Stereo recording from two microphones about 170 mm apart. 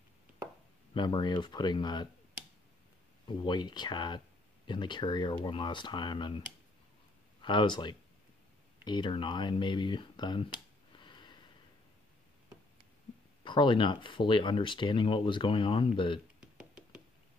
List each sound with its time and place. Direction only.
0.9 s speech: 25° left (ahead or behind)
3.3 s speech: 25° left (ahead or behind)
7.4 s speech: 25° left (ahead or behind)
11.0 s a sound: 25° left (ahead or behind)
13.4 s speech: 30° left (ahead or behind)
16.3 s a sound: 5° right (ahead or behind)